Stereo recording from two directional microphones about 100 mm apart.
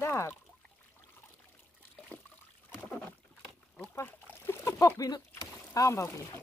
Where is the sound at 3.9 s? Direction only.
25° left (ahead or behind).